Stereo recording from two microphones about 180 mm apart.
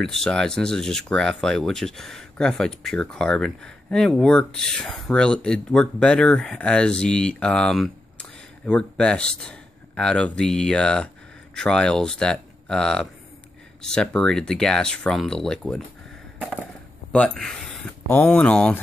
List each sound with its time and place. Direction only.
0.0 s speech: centre (ahead or behind)
17.1 s speech: 5° left (ahead or behind)